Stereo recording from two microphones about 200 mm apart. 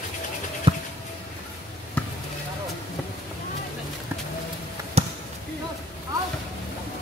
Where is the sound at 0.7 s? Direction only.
30° right (ahead or behind).